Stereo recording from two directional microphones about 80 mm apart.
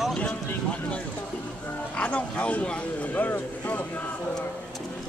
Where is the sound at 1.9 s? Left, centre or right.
Centre.